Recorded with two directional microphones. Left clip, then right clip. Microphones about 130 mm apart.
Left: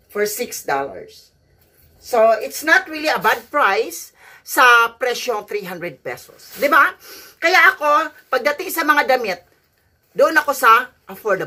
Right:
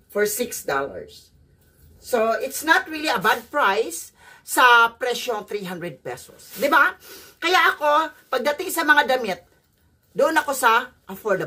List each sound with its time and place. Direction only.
0.5 s speech: 15° right (ahead or behind)
2.4 s speech: 20° right (ahead or behind)